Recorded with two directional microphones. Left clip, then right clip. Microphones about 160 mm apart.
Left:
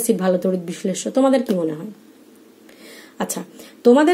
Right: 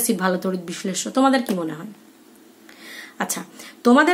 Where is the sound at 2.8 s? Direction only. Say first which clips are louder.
Even; 15° left (ahead or behind).